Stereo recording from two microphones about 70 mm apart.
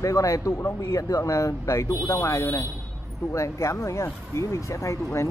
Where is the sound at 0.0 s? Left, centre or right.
Left.